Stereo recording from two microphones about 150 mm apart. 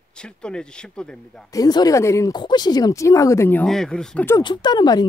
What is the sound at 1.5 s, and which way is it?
Speech, 25° left (ahead or behind).